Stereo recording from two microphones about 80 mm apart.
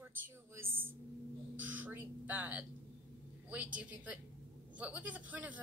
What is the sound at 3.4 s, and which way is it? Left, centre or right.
A woman's voice, right.